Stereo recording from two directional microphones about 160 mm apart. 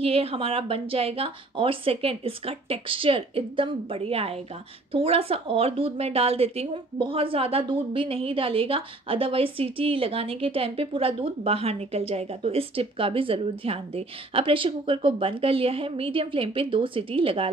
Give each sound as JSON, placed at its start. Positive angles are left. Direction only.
{"t": 0.0, "sound": "a woman's voice", "side_deg": -35}